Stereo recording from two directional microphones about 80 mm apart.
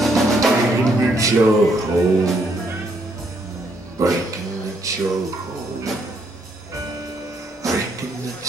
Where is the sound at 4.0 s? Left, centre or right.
Right.